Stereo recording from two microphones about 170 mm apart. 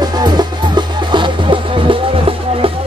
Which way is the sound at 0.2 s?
25° right (ahead or behind).